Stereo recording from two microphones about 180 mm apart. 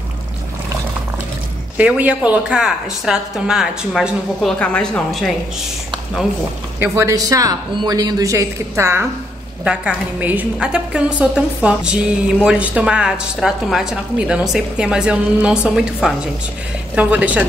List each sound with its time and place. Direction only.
1.8 s a woman's voice: 10° right (ahead or behind)
6.8 s a woman's voice: 15° right (ahead or behind)